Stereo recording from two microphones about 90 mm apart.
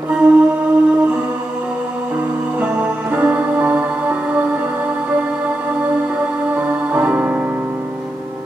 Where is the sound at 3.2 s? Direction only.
15° right (ahead or behind).